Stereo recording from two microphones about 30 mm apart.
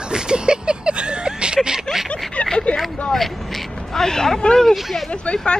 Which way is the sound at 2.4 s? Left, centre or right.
Left.